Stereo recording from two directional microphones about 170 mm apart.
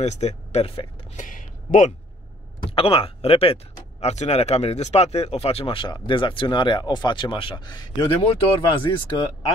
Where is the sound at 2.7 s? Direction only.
35° left (ahead or behind).